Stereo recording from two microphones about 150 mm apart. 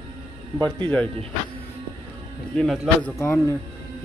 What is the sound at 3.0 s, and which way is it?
Speech, 15° left (ahead or behind).